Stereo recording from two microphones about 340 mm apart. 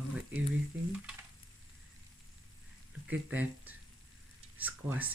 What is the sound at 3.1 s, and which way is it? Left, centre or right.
Speech, centre.